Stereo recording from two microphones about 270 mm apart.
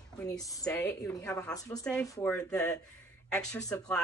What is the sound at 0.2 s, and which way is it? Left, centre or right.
Speech, centre.